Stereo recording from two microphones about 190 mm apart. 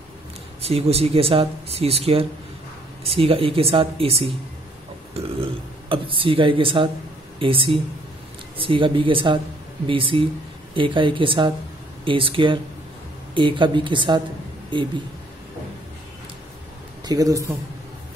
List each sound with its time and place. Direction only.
0.6 s speech: 30° right (ahead or behind)
17.0 s speech: 20° right (ahead or behind)